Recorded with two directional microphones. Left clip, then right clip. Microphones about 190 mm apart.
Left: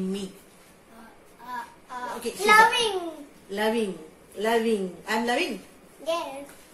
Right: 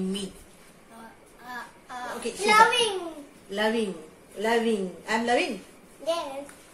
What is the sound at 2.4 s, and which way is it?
Speech, 15° left (ahead or behind).